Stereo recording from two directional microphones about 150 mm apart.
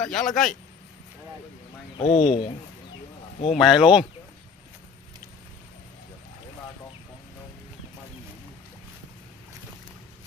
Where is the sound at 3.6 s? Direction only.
5° right (ahead or behind).